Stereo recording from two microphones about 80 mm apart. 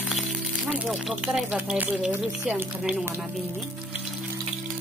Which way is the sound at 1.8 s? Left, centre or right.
Centre.